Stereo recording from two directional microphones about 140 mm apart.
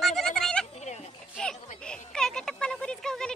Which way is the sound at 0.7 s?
55° left (ahead or behind).